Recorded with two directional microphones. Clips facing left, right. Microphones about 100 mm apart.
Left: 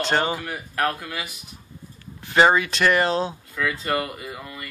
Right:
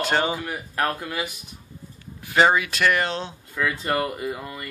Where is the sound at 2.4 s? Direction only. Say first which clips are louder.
Left 1 dB; centre (ahead or behind).